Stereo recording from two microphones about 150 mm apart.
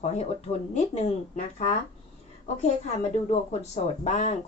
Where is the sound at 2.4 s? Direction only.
50° left (ahead or behind).